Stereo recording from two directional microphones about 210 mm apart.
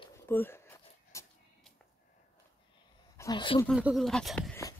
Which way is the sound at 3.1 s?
20° left (ahead or behind).